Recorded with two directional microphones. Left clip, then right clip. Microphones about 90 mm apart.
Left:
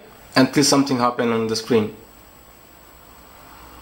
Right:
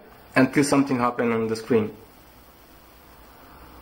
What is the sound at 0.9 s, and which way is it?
Speech, 15° left (ahead or behind).